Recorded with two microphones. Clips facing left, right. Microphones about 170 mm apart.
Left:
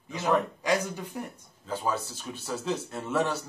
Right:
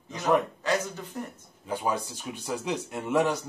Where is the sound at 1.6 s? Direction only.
15° right (ahead or behind).